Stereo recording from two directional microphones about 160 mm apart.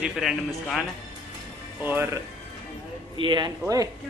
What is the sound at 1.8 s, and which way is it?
Speech, 10° right (ahead or behind).